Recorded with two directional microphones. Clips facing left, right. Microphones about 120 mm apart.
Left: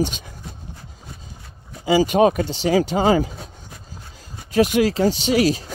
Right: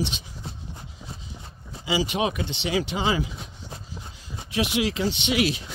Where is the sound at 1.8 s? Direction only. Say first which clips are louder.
Left 10 dB; 45° left (ahead or behind).